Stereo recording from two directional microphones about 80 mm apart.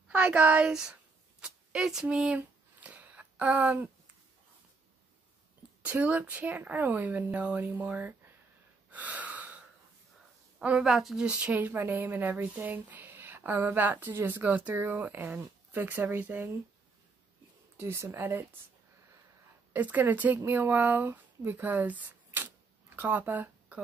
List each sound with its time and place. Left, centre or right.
0.1 s speech: centre
1.4 s a sound: centre
5.8 s speech: right
8.9 s gasp: centre
10.6 s speech: centre
11.2 s speech: centre
17.7 s speech: right
19.7 s speech: right